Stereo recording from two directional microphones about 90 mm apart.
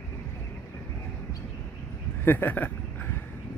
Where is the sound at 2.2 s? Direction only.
25° left (ahead or behind).